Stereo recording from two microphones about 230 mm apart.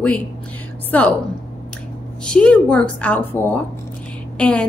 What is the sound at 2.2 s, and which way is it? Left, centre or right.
A woman's voice, centre.